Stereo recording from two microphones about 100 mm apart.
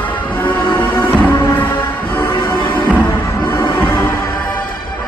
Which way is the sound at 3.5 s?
20° left (ahead or behind).